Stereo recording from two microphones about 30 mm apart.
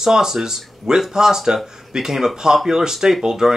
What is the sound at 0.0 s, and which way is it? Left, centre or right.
Speech, centre.